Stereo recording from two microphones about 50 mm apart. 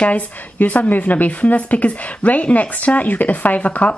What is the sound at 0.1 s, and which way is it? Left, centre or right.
A woman's voice, left.